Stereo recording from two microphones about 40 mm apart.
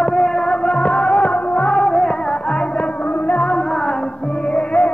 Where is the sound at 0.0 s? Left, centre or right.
Centre.